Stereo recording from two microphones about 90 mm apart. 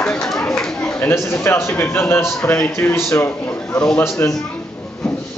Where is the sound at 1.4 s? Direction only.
30° left (ahead or behind).